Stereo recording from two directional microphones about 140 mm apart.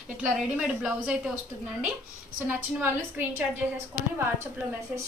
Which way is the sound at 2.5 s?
15° right (ahead or behind).